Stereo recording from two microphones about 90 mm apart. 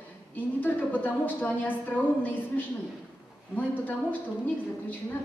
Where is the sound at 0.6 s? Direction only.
20° left (ahead or behind).